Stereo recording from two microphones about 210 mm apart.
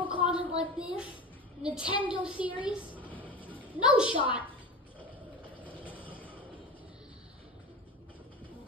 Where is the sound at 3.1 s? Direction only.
10° left (ahead or behind).